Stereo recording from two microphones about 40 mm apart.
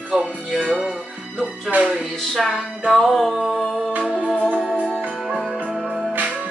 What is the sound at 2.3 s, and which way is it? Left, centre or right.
Music, centre.